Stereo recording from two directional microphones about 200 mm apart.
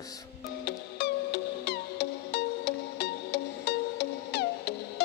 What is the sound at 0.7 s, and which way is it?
Music, 55° left (ahead or behind).